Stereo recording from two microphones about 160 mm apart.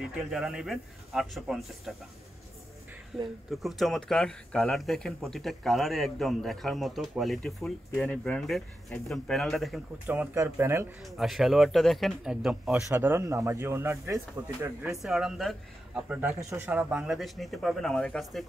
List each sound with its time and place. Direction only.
0.0 s speech: centre (ahead or behind)
3.1 s speech: centre (ahead or behind)
10.0 s speech: 10° right (ahead or behind)
11.1 s speech: centre (ahead or behind); by 14.9 s 15° right (ahead or behind)
14.9 s speech: centre (ahead or behind)